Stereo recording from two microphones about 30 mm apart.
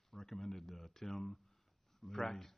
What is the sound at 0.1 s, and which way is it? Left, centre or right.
Speech, centre.